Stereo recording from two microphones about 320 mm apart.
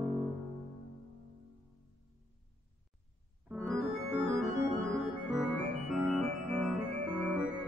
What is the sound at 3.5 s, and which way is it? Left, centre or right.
Organ, centre.